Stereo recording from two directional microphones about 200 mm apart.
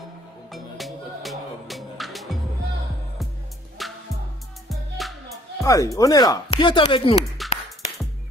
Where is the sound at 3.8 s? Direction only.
Centre (ahead or behind).